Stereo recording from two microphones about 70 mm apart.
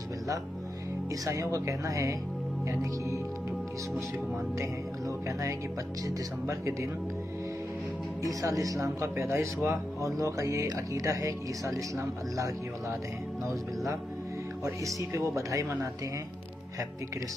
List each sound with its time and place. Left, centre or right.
1.2 s speech: right
4.6 s speech: right
8.2 s speech: right
15.0 s speech: right